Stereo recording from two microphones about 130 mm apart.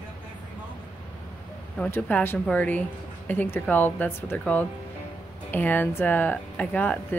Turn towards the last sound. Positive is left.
turn(degrees=10)  # may be behind; listen again after turning